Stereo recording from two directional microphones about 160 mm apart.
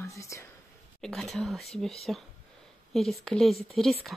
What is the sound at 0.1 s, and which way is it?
Speech, 20° left (ahead or behind).